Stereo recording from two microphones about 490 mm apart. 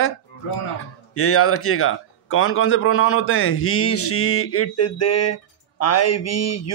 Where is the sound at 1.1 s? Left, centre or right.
Left.